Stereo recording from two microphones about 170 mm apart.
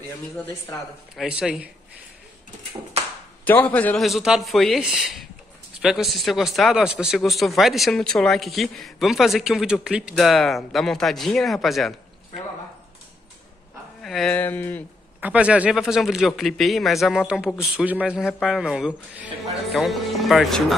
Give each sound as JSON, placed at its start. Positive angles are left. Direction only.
{"t": 1.1, "sound": "a man's voice", "side_deg": -5}
{"t": 3.4, "sound": "a man's voice", "side_deg": 10}
{"t": 14.0, "sound": "speech", "side_deg": 0}
{"t": 14.3, "sound": "speech", "side_deg": 10}
{"t": 15.1, "sound": "a man's voice", "side_deg": -10}